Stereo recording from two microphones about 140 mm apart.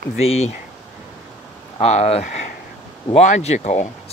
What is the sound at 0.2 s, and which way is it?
Speech, 45° left (ahead or behind).